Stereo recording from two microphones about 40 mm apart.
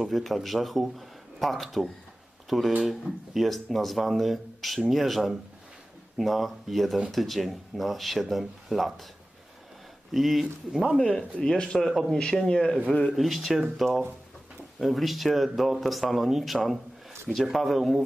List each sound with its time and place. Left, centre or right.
0.0 s speech: centre
10.1 s speech: centre
11.4 s speech: centre
11.8 s speech: centre
12.2 s speech: centre
13.1 s speech: centre